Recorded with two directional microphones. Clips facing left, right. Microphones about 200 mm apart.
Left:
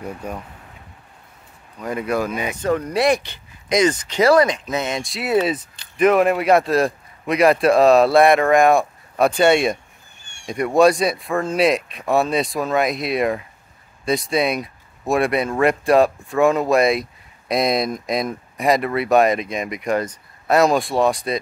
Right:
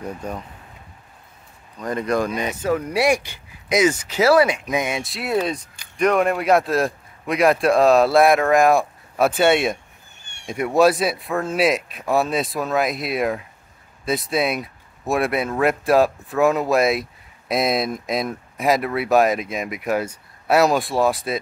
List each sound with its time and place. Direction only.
0.0 s speech: 10° left (ahead or behind)
1.8 s speech: 10° left (ahead or behind)
2.6 s speech: 5° right (ahead or behind)